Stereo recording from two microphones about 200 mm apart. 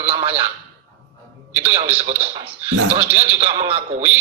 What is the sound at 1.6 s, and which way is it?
Speech, 30° right (ahead or behind).